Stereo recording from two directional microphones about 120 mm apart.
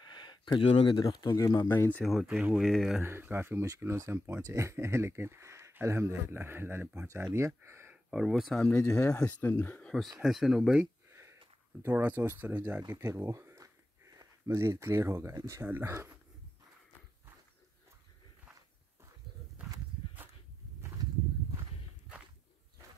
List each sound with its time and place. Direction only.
0.0 s a sound: 40° left (ahead or behind)
1.0 s speech: 30° left (ahead or behind)
1.7 s speech: 15° left (ahead or behind)
2.0 s speech: 5° right (ahead or behind)
3.0 s speech: 20° right (ahead or behind)
7.9 s speech: 5° right (ahead or behind)
8.7 s speech: 25° left (ahead or behind); by 10.9 s 5° right (ahead or behind)
11.1 s a sound: 25° right (ahead or behind)
11.8 s speech: 15° right (ahead or behind)